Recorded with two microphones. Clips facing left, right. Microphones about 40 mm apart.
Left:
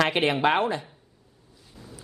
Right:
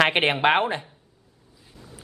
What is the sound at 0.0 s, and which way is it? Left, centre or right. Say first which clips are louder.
Speech: right 2 dB; right.